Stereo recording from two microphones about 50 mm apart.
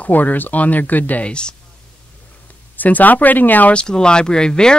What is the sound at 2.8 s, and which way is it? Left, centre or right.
Speech, left.